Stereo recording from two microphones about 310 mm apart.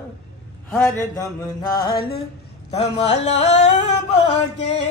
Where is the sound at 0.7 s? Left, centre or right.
Centre.